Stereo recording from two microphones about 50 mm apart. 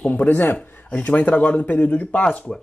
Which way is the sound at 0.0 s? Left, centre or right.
Left.